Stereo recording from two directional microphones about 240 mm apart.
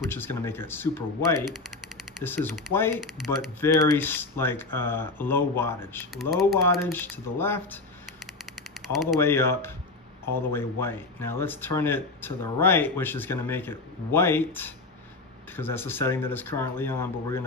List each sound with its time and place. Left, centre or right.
0.1 s speech: centre
9.2 s speech: centre